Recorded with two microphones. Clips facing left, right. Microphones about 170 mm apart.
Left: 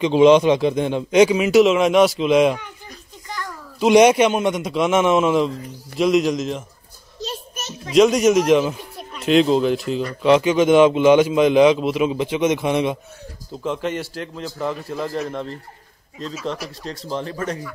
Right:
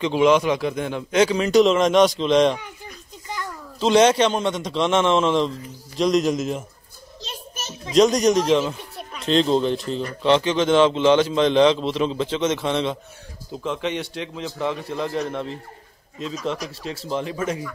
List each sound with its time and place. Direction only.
0.0 s a man's voice: 20° left (ahead or behind)
3.3 s a sound: 15° right (ahead or behind)
3.8 s a man's voice: 15° left (ahead or behind); by 6.6 s 5° right (ahead or behind)
7.9 s a man's voice: 5° left (ahead or behind)
8.9 s music: 5° right (ahead or behind)
9.3 s a man's voice: 5° left (ahead or behind)
16.8 s a man's voice: 5° right (ahead or behind)